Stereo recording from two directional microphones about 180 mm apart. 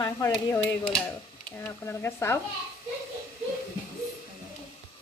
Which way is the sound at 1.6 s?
15° left (ahead or behind).